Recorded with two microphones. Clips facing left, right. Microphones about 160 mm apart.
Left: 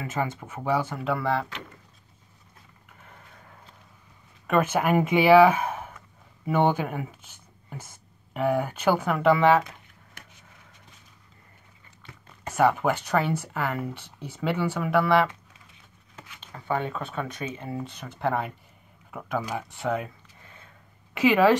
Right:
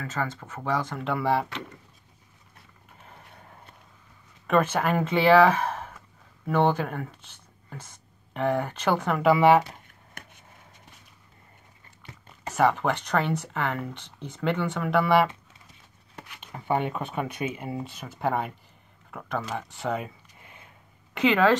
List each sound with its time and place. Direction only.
0.0 s speech: 15° left (ahead or behind); by 1.5 s 5° right (ahead or behind)
4.5 s speech: 5° left (ahead or behind)
12.4 s speech: 5° left (ahead or behind)
16.3 s speech: 20° right (ahead or behind); by 20.1 s centre (ahead or behind)
21.1 s speech: 5° left (ahead or behind)